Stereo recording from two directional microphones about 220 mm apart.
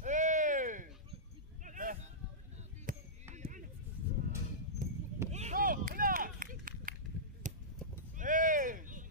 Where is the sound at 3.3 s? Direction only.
35° right (ahead or behind).